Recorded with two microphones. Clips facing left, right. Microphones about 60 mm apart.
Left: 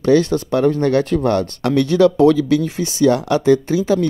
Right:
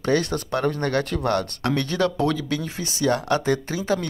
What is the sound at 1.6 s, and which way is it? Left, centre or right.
Speech, right.